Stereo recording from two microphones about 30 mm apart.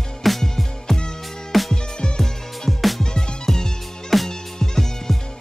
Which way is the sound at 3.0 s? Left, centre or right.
Centre.